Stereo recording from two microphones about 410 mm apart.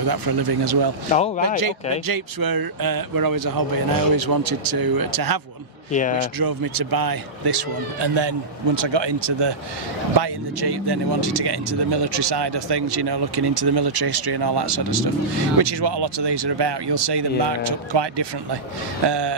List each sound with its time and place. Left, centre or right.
0.0 s a man's voice: right
1.1 s speech: centre
2.0 s a man's voice: right
5.9 s speech: centre
6.1 s speech: right
10.1 s speech: right